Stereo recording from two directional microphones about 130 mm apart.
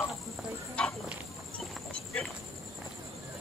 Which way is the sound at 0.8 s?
10° left (ahead or behind).